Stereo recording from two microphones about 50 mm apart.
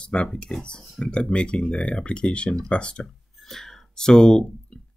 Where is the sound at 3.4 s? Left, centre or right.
Centre.